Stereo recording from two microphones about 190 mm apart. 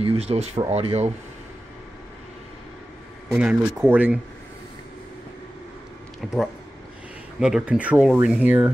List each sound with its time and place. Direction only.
0.0 s speech: 30° right (ahead or behind)
3.3 s speech: 5° right (ahead or behind)
6.2 s speech: centre (ahead or behind)